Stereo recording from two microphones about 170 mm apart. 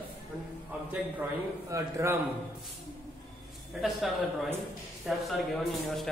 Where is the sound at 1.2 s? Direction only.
20° right (ahead or behind).